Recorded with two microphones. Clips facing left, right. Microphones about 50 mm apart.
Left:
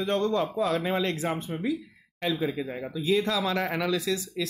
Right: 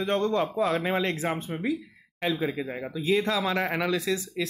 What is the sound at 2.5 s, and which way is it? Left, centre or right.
A man's voice, right.